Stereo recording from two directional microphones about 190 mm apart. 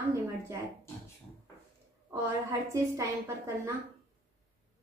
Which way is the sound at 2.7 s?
15° right (ahead or behind).